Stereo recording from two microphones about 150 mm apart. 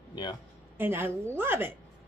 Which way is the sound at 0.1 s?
25° left (ahead or behind).